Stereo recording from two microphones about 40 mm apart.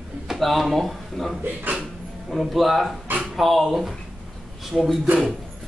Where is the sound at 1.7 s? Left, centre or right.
Right.